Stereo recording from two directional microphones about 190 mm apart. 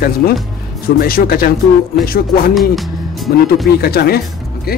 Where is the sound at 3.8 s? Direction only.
55° left (ahead or behind).